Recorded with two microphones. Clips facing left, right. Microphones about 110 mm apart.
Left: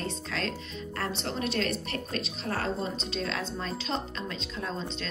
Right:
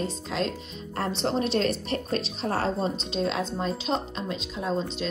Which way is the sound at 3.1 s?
15° right (ahead or behind).